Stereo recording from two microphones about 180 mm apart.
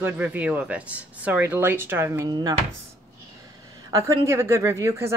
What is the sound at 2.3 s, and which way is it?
Speech, 25° right (ahead or behind).